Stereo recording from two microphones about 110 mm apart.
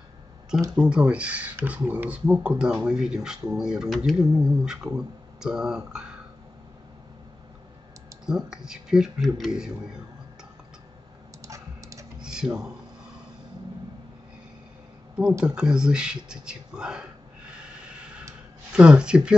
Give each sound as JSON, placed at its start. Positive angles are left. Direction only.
{"t": 0.7, "sound": "speech", "side_deg": -10}
{"t": 8.3, "sound": "speech", "side_deg": -5}
{"t": 11.4, "sound": "typing", "side_deg": -30}
{"t": 12.2, "sound": "a sound", "side_deg": -5}
{"t": 15.4, "sound": "speech", "side_deg": -10}
{"t": 18.7, "sound": "speech", "side_deg": -10}